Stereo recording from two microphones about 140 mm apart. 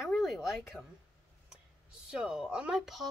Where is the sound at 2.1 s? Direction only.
5° right (ahead or behind).